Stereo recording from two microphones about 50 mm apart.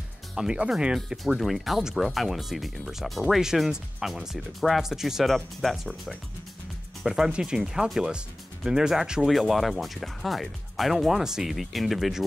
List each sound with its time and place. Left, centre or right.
0.4 s speech: centre
0.9 s speech: centre
7.1 s speech: centre
9.3 s speech: centre